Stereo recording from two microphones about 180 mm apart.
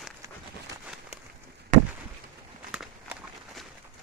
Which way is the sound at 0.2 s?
15° right (ahead or behind).